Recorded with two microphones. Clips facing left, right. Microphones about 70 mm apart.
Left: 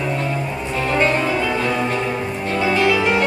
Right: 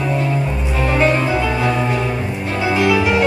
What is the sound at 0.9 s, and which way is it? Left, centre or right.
Music, centre.